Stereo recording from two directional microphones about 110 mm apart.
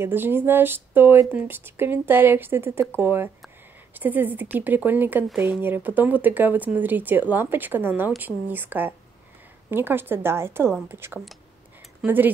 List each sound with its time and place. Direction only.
0.0 s speech: 20° right (ahead or behind)
5.3 s speech: centre (ahead or behind)
5.6 s speech: 20° right (ahead or behind)